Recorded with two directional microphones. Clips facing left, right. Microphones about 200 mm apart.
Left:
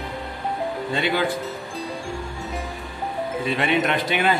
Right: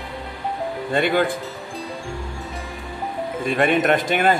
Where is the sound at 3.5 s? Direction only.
50° right (ahead or behind).